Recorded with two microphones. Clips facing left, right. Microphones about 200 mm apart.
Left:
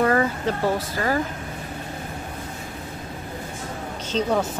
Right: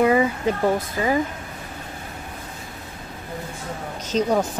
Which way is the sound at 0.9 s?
15° right (ahead or behind).